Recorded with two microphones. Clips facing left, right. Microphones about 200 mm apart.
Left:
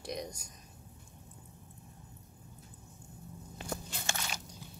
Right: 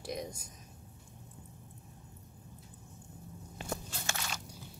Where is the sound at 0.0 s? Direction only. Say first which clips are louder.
Even; centre (ahead or behind).